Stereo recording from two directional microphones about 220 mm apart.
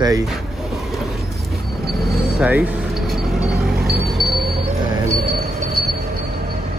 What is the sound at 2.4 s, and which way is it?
Vehicle, 5° right (ahead or behind).